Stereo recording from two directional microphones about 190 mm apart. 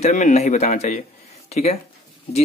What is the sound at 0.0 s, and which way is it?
Speech, 40° left (ahead or behind).